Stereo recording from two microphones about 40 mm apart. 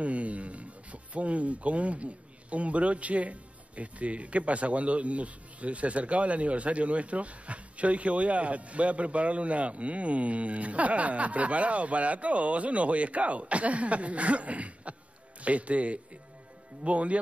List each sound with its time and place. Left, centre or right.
0.0 s speech: right